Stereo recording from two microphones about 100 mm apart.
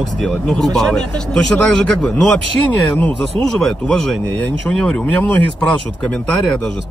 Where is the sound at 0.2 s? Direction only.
5° left (ahead or behind).